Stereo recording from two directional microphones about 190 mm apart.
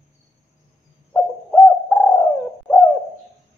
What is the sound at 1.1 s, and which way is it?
Bird, 5° left (ahead or behind).